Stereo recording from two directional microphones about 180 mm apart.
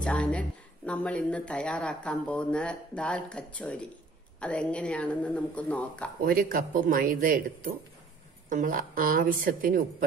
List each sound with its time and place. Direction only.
0.0 s a woman's voice: 5° left (ahead or behind)
6.2 s speech: 50° right (ahead or behind)